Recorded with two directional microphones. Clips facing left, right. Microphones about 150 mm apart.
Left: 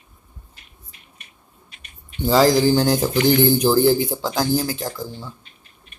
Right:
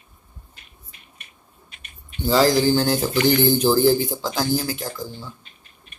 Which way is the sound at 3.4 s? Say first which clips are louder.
Left 1 dB; 10° left (ahead or behind).